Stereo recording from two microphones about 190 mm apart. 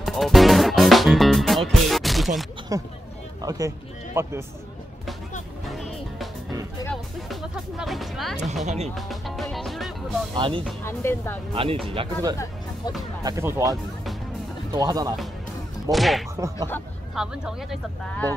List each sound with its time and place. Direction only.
0.0 s music: centre (ahead or behind)
2.7 s speech: 15° right (ahead or behind)
5.7 s music: centre (ahead or behind)
6.9 s speech: centre (ahead or behind)
8.6 s speech: 35° right (ahead or behind)
8.9 s speech: centre (ahead or behind)
10.3 s speech: 25° right (ahead or behind)
10.8 s speech: 15° left (ahead or behind)
11.5 s speech: 30° right (ahead or behind)
15.9 s speech: centre (ahead or behind)
16.3 s speech: 15° right (ahead or behind)
17.1 s speech: 5° right (ahead or behind)